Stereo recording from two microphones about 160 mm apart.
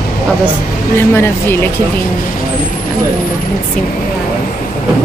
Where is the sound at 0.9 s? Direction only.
15° left (ahead or behind).